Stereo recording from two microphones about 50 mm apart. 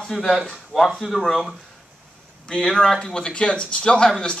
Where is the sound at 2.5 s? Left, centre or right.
Centre.